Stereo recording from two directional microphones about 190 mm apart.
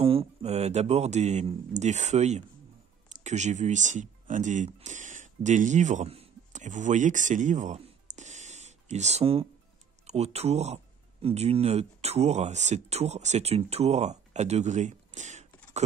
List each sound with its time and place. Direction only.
0.0 s speech: 30° right (ahead or behind)